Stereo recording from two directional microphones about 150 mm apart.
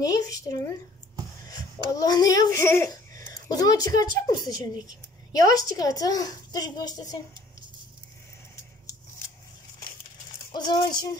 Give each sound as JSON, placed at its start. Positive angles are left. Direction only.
{"t": 0.0, "sound": "a child's voice", "side_deg": 25}
{"t": 2.0, "sound": "a child's voice", "side_deg": 25}
{"t": 10.5, "sound": "a child's voice", "side_deg": 25}